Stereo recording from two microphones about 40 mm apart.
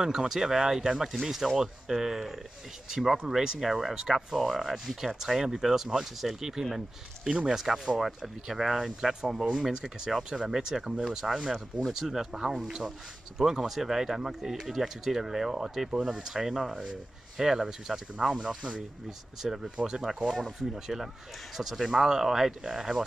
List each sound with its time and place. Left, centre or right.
0.0 s speech: centre
7.2 s speech: right
7.5 s speech: centre
19.0 s speech: centre